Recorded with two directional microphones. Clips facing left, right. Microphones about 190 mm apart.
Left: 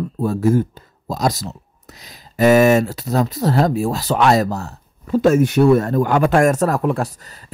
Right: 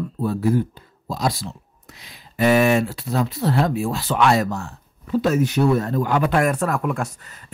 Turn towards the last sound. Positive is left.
turn(degrees=35)  # may be behind; listen again after turning